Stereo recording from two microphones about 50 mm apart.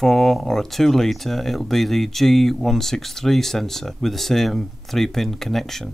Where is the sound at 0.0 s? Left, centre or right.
Centre.